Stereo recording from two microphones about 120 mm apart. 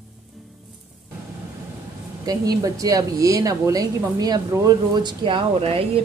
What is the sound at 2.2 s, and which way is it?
A woman's voice, 30° right (ahead or behind).